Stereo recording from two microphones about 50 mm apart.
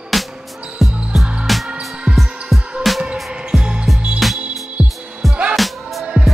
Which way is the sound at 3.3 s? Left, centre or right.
Centre.